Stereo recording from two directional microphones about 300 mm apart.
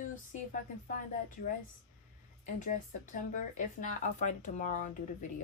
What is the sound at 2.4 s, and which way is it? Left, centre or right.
Speech, left.